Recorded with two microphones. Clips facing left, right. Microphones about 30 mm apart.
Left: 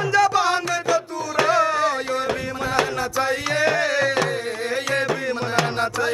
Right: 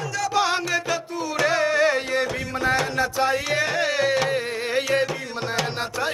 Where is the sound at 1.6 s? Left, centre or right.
Right.